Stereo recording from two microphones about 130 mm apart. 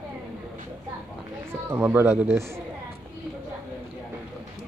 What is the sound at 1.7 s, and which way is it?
Speech, 20° right (ahead or behind).